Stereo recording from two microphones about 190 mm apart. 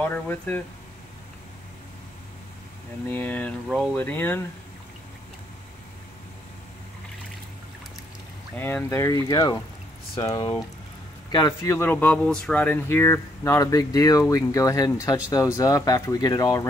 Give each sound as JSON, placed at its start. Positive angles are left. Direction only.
{"t": 0.0, "sound": "speech", "side_deg": 10}
{"t": 3.1, "sound": "speech", "side_deg": 10}
{"t": 8.5, "sound": "speech", "side_deg": 10}